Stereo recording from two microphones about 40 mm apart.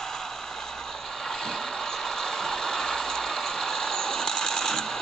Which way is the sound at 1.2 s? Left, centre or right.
Centre.